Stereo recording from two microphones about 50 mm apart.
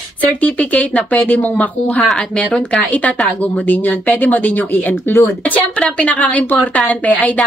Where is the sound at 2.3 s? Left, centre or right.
Centre.